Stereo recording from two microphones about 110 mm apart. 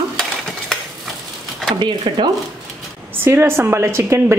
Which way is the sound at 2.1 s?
50° right (ahead or behind).